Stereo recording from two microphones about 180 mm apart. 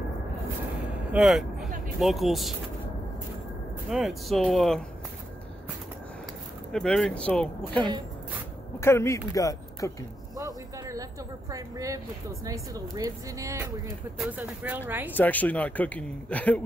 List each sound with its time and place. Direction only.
1.1 s speech: 5° right (ahead or behind)
3.9 s speech: centre (ahead or behind)
6.7 s speech: 5° left (ahead or behind)
10.3 s a sound: 20° right (ahead or behind)
11.5 s speech: 20° right (ahead or behind)
14.1 s speech: 5° right (ahead or behind)
15.1 s speech: 10° left (ahead or behind)